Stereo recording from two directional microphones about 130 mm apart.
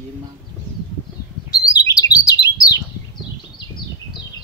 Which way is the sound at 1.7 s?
30° left (ahead or behind).